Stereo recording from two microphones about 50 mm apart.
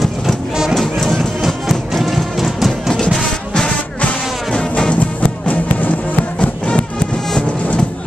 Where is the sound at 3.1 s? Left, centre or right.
Centre; by 5.9 s left.